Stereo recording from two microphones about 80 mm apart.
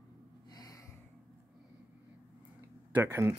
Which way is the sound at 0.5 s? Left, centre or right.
Left.